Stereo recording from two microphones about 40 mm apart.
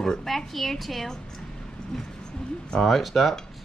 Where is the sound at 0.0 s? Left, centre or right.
Centre.